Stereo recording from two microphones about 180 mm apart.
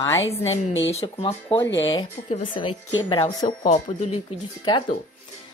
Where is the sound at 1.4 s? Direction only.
15° left (ahead or behind).